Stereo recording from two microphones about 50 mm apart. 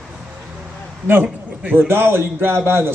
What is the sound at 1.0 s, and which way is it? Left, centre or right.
A man's voice, right.